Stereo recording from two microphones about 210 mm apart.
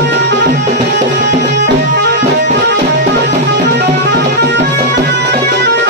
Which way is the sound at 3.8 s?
55° right (ahead or behind).